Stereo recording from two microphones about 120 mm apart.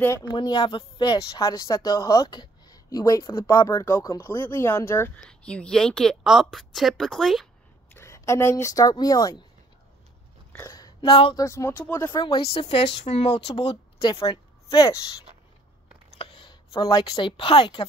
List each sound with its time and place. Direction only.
0.3 s speech: 40° left (ahead or behind)
4.5 s speech: 20° left (ahead or behind)
5.1 s a woman's voice: 10° left (ahead or behind)
7.9 s speech: 25° left (ahead or behind)
10.7 s a sound: 30° left (ahead or behind)
11.1 s speech: 50° left (ahead or behind)
11.3 s speech: 25° left (ahead or behind)
12.0 s speech: 35° left (ahead or behind)
12.4 s speech: 55° left (ahead or behind)
14.2 s a woman's voice: 30° left (ahead or behind)
16.2 s a sound: 45° left (ahead or behind)
17.0 s speech: 35° left (ahead or behind)